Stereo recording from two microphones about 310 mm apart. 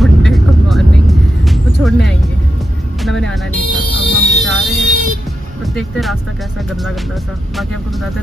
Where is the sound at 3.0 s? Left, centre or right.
Centre.